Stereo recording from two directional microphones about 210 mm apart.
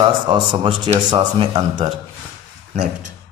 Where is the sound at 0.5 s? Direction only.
25° right (ahead or behind).